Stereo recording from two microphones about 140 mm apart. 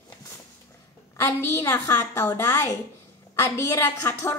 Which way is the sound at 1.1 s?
15° left (ahead or behind).